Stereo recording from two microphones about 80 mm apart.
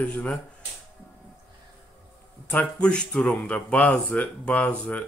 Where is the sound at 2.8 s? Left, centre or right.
Centre.